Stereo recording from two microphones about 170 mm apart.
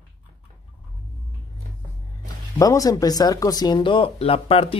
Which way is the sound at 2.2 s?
20° left (ahead or behind).